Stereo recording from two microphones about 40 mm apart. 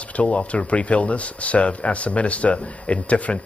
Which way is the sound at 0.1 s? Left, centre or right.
Left.